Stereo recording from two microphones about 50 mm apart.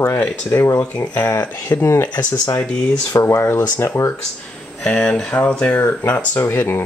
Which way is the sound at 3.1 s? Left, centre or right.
Left.